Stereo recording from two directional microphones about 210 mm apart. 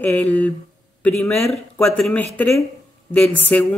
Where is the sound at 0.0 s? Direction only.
10° left (ahead or behind).